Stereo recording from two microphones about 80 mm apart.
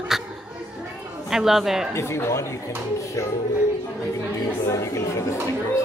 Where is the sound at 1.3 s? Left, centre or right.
Centre.